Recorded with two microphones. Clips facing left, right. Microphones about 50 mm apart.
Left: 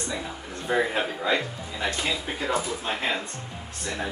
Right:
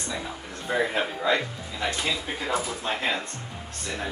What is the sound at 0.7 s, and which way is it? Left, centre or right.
Speech, centre.